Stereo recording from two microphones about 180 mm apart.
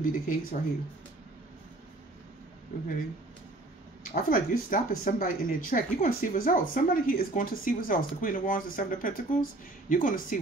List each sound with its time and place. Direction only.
0.0 s speech: 50° left (ahead or behind)
4.1 s speech: 50° left (ahead or behind)